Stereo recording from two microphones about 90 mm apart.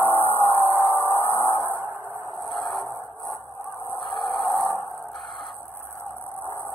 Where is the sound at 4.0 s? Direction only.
70° left (ahead or behind).